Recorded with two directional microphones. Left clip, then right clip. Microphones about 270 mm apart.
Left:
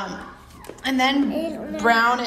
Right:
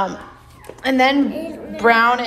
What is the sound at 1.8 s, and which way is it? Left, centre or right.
Speech, centre.